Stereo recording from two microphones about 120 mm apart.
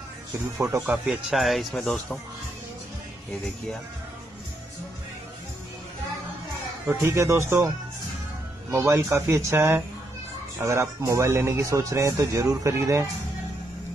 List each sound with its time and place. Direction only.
0.6 s speech: 20° right (ahead or behind)
1.0 s speech: centre (ahead or behind)
6.9 s speech: 20° right (ahead or behind)
8.7 s speech: 25° right (ahead or behind)